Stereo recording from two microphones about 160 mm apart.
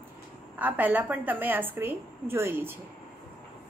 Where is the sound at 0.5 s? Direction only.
10° right (ahead or behind).